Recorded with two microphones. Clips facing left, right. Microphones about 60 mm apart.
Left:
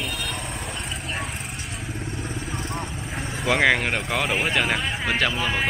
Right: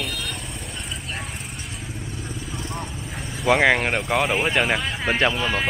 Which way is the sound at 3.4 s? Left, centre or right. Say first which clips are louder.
Right 2 dB; centre.